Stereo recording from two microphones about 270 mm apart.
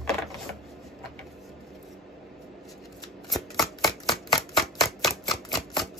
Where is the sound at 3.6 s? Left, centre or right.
Centre.